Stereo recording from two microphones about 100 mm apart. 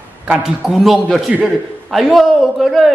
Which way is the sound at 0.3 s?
5° right (ahead or behind).